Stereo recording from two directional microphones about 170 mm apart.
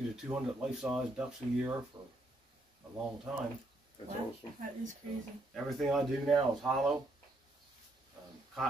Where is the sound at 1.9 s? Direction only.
20° right (ahead or behind).